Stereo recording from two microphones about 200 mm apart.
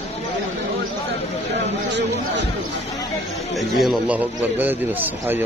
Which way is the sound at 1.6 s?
60° right (ahead or behind).